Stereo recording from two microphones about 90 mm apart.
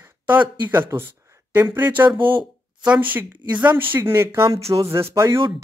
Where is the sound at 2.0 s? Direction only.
65° right (ahead or behind).